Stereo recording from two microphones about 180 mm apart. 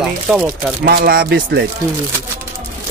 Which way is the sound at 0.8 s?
55° right (ahead or behind).